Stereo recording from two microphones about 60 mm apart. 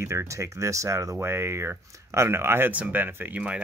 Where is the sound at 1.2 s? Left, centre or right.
Right.